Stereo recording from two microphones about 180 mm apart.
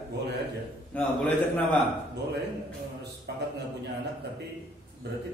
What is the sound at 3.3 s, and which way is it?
Speech, 65° right (ahead or behind).